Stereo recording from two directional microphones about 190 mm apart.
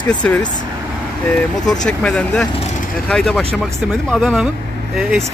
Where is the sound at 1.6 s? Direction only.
5° left (ahead or behind).